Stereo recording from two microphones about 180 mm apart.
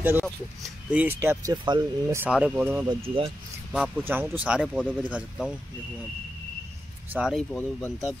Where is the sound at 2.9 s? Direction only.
30° right (ahead or behind).